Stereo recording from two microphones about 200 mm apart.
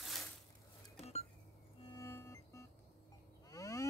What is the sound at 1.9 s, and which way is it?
Music, 15° left (ahead or behind).